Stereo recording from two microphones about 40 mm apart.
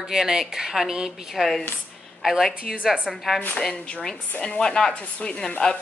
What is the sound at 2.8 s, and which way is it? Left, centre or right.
Speech, right.